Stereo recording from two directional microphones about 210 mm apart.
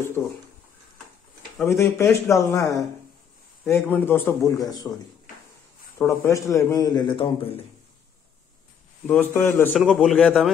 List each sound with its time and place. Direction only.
1.6 s a man's voice: 15° left (ahead or behind)
5.9 s a man's voice: 15° left (ahead or behind)
9.0 s a man's voice: 10° left (ahead or behind)